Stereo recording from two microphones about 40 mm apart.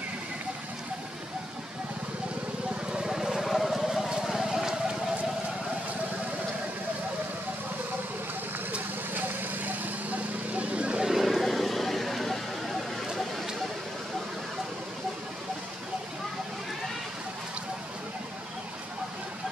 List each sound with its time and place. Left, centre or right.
2.7 s vehicle: right
3.4 s vehicle: centre
9.1 s vehicle: right
10.5 s vehicle: right
11.0 s a sound: centre
11.2 s vehicle: centre